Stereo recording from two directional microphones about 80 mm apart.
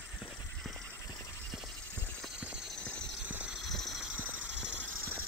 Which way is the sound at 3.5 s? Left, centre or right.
Centre.